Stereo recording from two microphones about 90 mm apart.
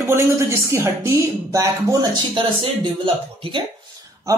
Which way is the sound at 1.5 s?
40° right (ahead or behind).